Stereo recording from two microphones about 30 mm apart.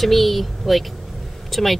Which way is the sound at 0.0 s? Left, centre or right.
Centre.